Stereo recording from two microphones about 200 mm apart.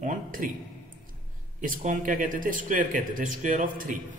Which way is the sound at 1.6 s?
40° right (ahead or behind).